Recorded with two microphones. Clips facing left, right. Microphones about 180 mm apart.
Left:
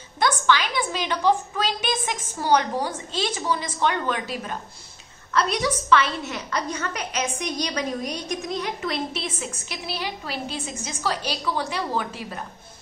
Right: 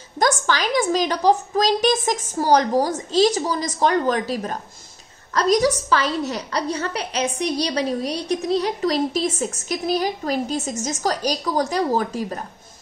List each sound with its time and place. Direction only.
0.2 s a woman's voice: 40° right (ahead or behind)